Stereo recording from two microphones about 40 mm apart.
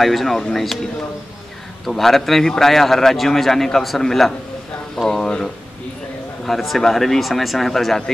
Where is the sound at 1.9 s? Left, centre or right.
Centre.